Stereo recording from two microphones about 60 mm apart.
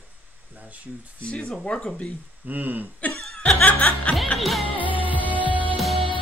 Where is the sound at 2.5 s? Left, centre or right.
Right.